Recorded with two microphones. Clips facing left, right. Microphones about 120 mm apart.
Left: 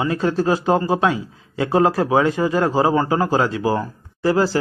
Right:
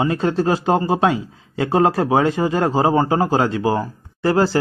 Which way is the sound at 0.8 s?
25° right (ahead or behind).